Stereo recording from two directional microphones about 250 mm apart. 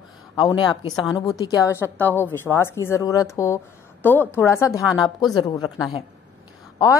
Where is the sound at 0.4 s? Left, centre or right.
Centre.